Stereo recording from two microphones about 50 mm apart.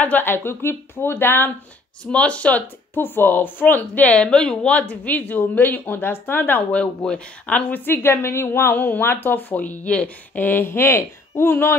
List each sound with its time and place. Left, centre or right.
0.0 s speech: left
2.0 s speech: left
2.9 s speech: left
4.1 s speech: centre
4.7 s speech: left
5.2 s speech: left
6.7 s speech: left
7.8 s a woman's voice: left
8.7 s speech: left
10.3 s speech: left
10.6 s a woman's voice: left